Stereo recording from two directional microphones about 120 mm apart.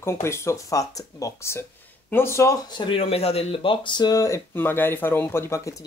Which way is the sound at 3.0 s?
55° left (ahead or behind).